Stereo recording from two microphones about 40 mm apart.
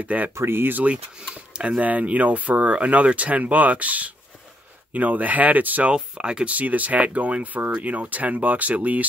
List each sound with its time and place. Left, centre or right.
0.0 s speech: right
0.5 s speech: right
1.3 s a sound: right
1.8 s speech: right
5.9 s speech: right
6.5 s speech: right